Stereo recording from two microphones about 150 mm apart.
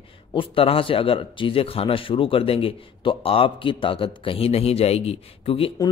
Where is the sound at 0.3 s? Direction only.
35° left (ahead or behind).